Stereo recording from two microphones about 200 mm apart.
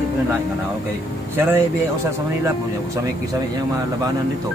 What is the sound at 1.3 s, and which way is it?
Speech, 10° right (ahead or behind).